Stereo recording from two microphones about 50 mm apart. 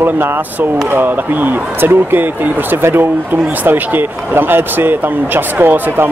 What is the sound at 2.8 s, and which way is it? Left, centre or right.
Speech, right.